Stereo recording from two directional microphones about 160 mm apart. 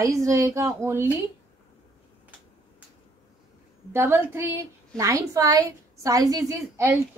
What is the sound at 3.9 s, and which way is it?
A woman's voice, 15° right (ahead or behind).